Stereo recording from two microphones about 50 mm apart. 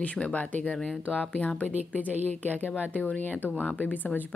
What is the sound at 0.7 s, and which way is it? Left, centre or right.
Speech, centre.